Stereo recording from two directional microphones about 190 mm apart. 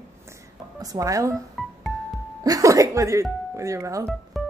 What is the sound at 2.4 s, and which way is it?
Music, 20° right (ahead or behind).